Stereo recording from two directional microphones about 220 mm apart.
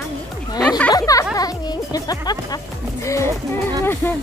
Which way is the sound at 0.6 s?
5° left (ahead or behind).